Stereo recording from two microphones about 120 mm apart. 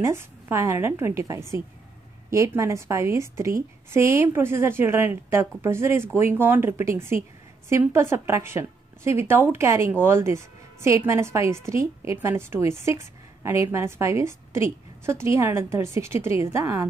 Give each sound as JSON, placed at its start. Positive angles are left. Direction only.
{"t": 0.0, "sound": "a woman's voice", "side_deg": -20}